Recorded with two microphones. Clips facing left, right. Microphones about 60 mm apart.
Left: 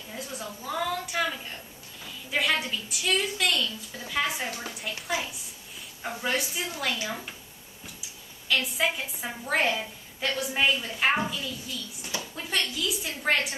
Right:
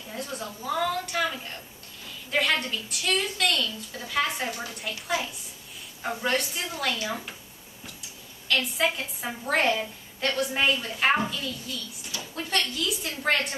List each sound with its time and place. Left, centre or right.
0.1 s a woman's voice: centre
8.5 s a woman's voice: centre